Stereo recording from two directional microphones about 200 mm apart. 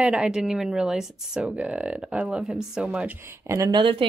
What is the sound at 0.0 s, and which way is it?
Speech, 5° right (ahead or behind).